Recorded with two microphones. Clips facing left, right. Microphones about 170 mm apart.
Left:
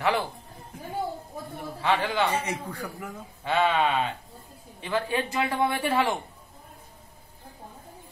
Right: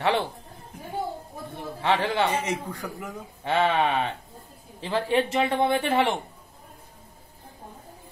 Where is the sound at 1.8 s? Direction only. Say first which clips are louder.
Right 1 dB; 25° right (ahead or behind).